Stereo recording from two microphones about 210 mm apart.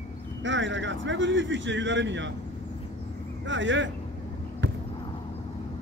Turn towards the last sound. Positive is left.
turn(degrees=-60)  # may be behind; listen again after turning